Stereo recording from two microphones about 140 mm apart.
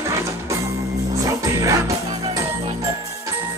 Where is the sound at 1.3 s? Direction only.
25° right (ahead or behind).